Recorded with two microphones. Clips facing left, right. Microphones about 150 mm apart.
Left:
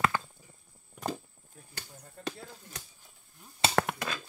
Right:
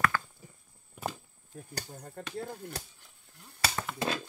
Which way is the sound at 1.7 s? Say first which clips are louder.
Right 6 dB; 45° right (ahead or behind).